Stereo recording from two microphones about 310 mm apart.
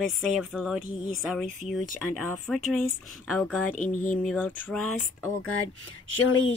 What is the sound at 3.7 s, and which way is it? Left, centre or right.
Speech, left.